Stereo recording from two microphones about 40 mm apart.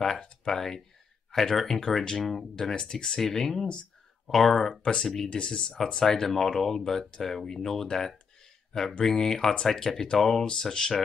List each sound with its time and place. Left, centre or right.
0.0 s speech: centre
5.3 s speech: left